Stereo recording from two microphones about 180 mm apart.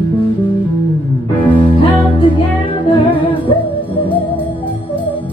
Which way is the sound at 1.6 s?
30° left (ahead or behind).